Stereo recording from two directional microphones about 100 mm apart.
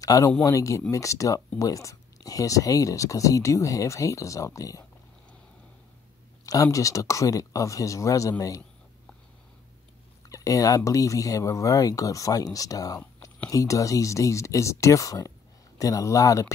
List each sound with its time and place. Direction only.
0.0 s speech: 35° left (ahead or behind)
6.4 s speech: 35° left (ahead or behind)
10.3 s speech: 35° left (ahead or behind)